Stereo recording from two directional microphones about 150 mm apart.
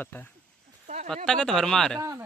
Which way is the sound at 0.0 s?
10° left (ahead or behind).